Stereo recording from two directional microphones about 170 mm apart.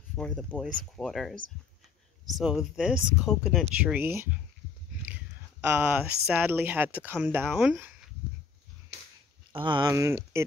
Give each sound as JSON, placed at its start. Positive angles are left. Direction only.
{"t": 0.1, "sound": "speech", "side_deg": 5}
{"t": 8.9, "sound": "a sound", "side_deg": -75}
{"t": 9.6, "sound": "speech", "side_deg": -25}